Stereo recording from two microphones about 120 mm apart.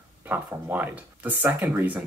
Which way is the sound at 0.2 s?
15° right (ahead or behind).